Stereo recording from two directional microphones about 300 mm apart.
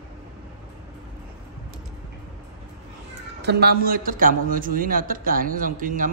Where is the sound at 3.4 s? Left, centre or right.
Right.